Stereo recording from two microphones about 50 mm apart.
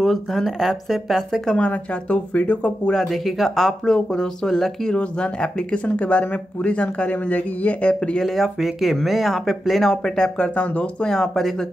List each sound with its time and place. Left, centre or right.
0.0 s speech: centre
1.5 s speech: left
3.1 s speech: centre
4.9 s speech: centre
8.2 s speech: centre; by 11.1 s left
11.1 s speech: centre